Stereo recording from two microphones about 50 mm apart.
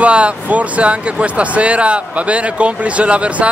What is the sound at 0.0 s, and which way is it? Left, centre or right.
Speech, right.